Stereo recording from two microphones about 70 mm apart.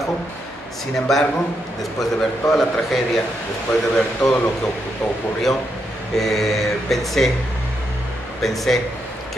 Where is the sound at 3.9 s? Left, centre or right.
Centre.